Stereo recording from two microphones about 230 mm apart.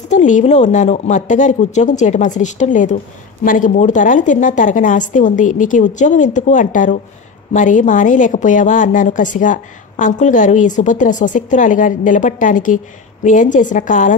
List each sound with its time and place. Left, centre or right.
0.1 s a woman's voice: left